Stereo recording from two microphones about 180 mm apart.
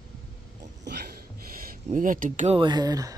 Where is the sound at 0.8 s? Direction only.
65° right (ahead or behind).